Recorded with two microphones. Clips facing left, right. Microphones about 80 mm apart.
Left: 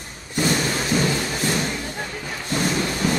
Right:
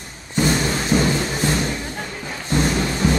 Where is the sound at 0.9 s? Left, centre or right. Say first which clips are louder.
Right 3 dB; right.